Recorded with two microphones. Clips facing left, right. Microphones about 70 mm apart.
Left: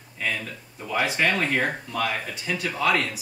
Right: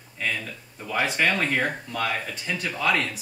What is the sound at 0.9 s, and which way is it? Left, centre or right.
Speech, centre.